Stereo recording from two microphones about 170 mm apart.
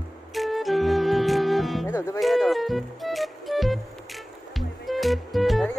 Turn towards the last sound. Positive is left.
turn(degrees=0)  # may be behind; listen again after turning